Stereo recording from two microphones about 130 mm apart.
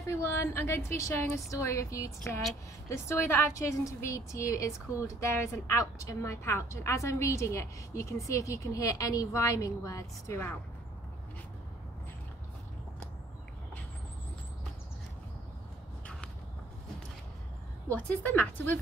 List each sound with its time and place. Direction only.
0.0 s a woman's voice: 20° left (ahead or behind)
17.9 s speech: 15° left (ahead or behind)